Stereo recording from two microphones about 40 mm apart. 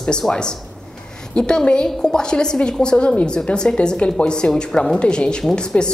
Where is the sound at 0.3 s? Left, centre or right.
Centre.